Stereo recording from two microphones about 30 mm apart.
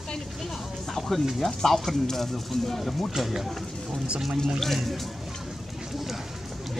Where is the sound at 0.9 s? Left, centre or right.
Centre.